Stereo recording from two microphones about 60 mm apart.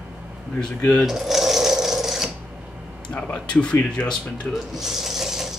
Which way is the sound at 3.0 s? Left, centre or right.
Centre.